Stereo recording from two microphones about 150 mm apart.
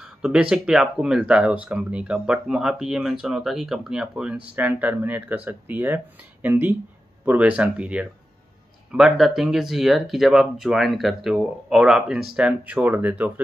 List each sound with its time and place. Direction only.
0.0 s speech: 5° right (ahead or behind)